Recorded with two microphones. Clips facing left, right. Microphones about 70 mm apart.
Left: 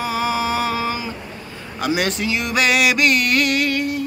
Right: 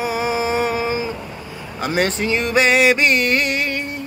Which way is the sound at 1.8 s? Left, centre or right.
Right.